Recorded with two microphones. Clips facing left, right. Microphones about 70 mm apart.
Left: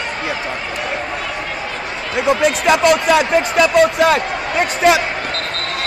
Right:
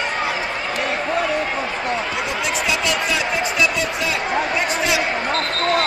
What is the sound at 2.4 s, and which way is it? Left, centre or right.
Speech, left.